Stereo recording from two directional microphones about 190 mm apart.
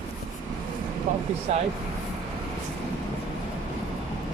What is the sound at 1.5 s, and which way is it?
Speech, 35° right (ahead or behind).